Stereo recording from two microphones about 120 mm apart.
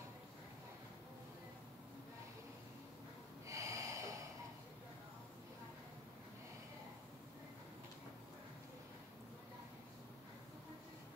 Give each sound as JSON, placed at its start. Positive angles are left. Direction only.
{"t": 3.4, "sound": "snort", "side_deg": -25}